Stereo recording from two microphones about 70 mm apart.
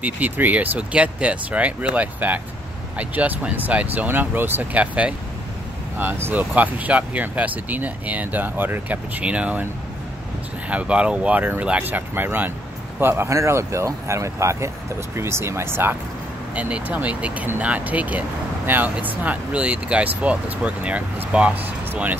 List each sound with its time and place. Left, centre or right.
0.0 s speech: right
5.9 s speech: right
10.7 s speech: centre; by 16.0 s right
16.5 s speech: centre